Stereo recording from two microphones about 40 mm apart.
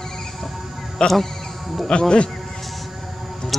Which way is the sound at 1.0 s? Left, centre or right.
Centre.